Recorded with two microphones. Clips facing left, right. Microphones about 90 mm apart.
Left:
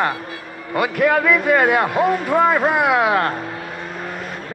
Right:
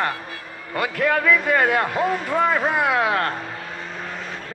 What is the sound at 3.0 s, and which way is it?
Speech, 20° left (ahead or behind).